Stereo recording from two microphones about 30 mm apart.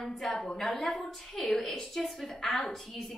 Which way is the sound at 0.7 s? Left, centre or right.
Centre.